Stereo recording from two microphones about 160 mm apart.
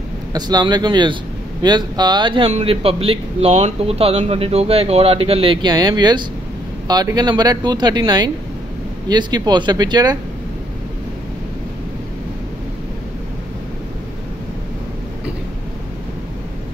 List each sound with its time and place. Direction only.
0.3 s a man's voice: 25° right (ahead or behind)